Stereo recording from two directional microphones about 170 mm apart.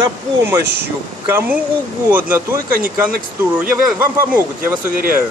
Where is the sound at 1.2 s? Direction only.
15° right (ahead or behind).